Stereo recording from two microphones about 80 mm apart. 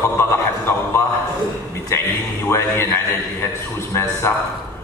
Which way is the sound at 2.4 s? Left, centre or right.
Left.